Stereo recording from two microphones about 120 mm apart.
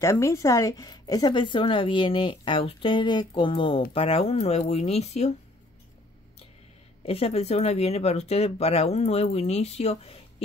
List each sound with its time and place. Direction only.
0.0 s a woman's voice: 25° left (ahead or behind); by 5.3 s 65° left (ahead or behind)
7.1 s speech: 55° left (ahead or behind)